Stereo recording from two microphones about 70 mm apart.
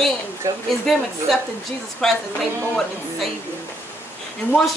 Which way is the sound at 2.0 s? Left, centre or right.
Centre.